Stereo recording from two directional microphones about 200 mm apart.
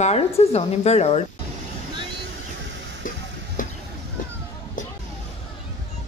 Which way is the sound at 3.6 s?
40° left (ahead or behind).